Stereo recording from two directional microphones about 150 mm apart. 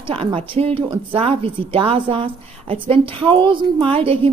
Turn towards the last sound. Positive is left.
turn(degrees=-40)  # may be behind; listen again after turning